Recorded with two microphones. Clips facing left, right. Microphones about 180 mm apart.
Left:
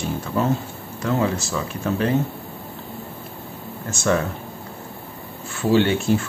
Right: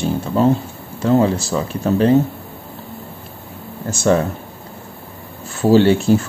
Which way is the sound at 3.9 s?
35° right (ahead or behind).